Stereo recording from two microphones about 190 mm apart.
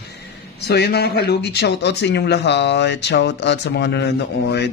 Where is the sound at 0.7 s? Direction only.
60° left (ahead or behind).